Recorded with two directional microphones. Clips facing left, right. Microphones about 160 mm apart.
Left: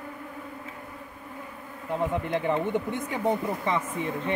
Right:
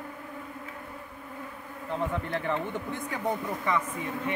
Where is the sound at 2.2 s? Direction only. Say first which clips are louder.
Left 4 dB; 20° left (ahead or behind).